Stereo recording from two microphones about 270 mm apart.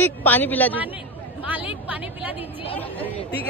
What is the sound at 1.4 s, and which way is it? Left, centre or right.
Speech, centre.